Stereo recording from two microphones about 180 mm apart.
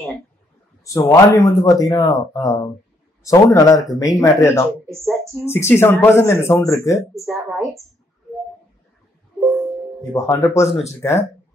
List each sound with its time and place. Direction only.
0.9 s speech: 15° left (ahead or behind)
7.2 s a woman's voice: centre (ahead or behind)
10.1 s speech: 15° left (ahead or behind)